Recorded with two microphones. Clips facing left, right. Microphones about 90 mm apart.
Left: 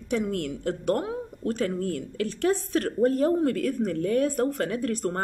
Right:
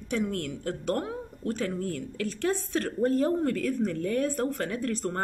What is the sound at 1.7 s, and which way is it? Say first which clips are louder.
Speech: left 3 dB; 15° left (ahead or behind).